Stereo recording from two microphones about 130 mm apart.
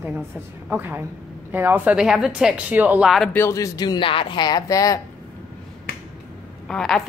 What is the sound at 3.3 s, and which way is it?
Speech, 20° left (ahead or behind).